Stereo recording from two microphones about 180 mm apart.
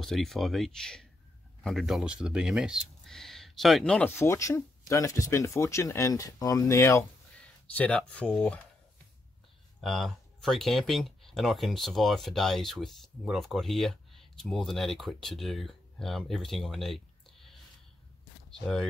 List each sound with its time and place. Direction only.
0.0 s speech: centre (ahead or behind)
9.8 s speech: centre (ahead or behind)